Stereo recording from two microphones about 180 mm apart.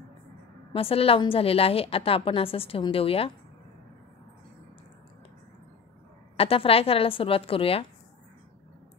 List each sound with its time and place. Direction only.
0.7 s a woman's voice: 30° left (ahead or behind)
6.3 s a woman's voice: 30° left (ahead or behind)